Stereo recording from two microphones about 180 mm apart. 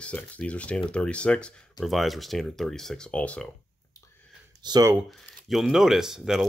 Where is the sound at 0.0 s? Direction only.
5° left (ahead or behind).